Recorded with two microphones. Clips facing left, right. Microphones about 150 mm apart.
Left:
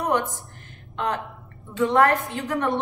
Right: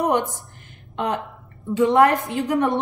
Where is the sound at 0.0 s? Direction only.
20° right (ahead or behind).